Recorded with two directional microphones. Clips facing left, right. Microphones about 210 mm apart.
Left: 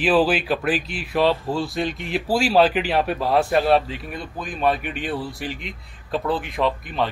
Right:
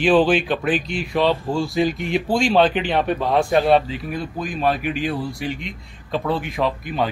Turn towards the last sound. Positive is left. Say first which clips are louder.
# right 1 dB
turn(degrees=0)  # may be behind; listen again after turning